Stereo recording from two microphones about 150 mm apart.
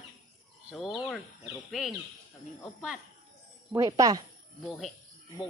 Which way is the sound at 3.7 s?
20° right (ahead or behind).